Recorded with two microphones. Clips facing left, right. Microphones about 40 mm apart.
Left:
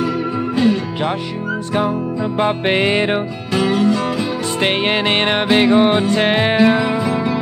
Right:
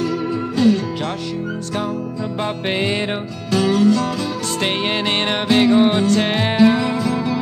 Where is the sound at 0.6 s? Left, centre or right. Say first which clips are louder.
Right 1 dB; centre.